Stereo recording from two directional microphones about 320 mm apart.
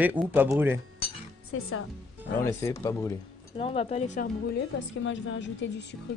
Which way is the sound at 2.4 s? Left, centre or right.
Centre.